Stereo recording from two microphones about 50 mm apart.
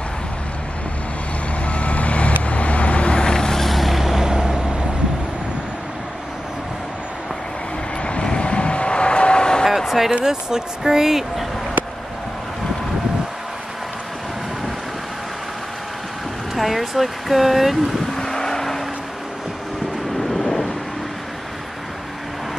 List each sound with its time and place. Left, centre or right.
1.7 s vehicle: left; by 4.8 s centre
8.0 s vehicle: left
9.7 s a sound: centre
10.2 s speech: centre
16.5 s speech: centre
18.1 s vehicle: centre
20.2 s thunder: centre